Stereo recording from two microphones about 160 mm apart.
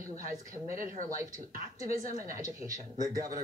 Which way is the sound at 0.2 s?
60° right (ahead or behind).